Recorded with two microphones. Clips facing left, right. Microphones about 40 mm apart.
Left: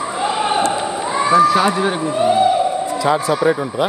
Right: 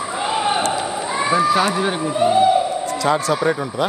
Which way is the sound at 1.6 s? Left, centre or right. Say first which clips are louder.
Left 2 dB; centre.